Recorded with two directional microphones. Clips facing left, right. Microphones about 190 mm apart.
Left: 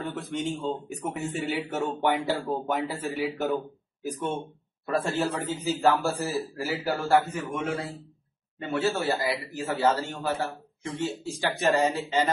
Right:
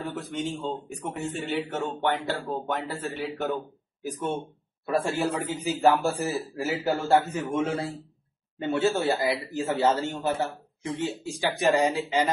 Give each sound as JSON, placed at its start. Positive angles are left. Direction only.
{"t": 0.0, "sound": "a man's voice", "side_deg": 0}